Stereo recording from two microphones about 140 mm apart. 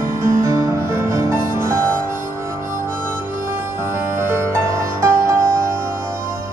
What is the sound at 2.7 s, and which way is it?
Harmonica, 20° right (ahead or behind).